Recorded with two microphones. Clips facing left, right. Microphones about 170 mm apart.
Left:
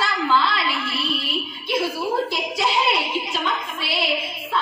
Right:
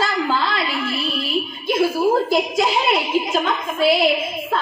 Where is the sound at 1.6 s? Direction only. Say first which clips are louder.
Right 6 dB; 45° right (ahead or behind).